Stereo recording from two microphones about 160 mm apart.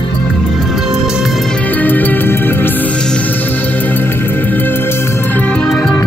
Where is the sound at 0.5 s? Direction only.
Centre (ahead or behind).